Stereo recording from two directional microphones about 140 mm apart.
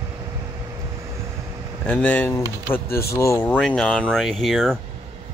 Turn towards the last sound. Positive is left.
turn(degrees=0)  # may be behind; listen again after turning